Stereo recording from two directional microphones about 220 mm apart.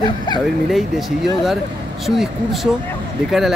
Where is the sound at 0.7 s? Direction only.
Centre (ahead or behind).